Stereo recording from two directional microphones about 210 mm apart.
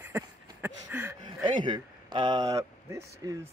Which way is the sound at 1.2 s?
20° right (ahead or behind).